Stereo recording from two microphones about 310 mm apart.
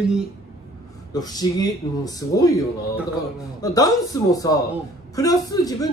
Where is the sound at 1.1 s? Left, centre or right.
Centre.